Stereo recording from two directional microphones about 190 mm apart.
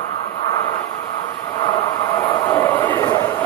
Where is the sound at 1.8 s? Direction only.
20° left (ahead or behind).